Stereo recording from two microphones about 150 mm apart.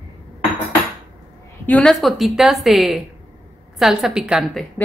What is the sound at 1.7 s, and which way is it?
Speech, 5° left (ahead or behind).